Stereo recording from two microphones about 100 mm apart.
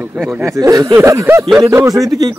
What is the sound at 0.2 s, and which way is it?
Speech, centre (ahead or behind).